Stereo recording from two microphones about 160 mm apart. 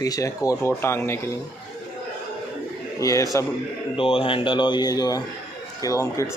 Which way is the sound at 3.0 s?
20° left (ahead or behind).